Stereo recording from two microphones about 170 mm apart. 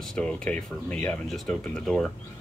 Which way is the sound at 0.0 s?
5° left (ahead or behind).